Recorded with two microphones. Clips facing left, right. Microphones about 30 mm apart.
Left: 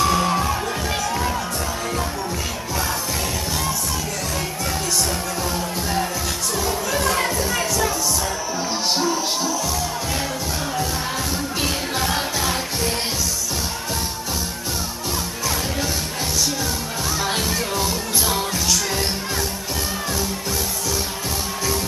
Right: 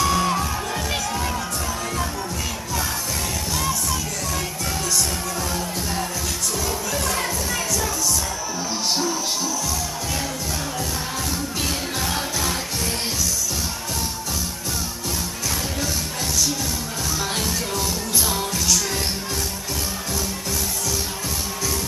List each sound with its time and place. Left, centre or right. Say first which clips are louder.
0.0 s music: left 2 dB; centre
5.5 s music: left 2 dB; centre
8.9 s music: left 3 dB; centre
11.6 s music: left 4 dB; centre
17.2 s music: left 3 dB; centre